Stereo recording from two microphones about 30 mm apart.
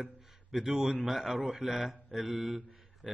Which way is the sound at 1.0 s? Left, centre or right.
Centre.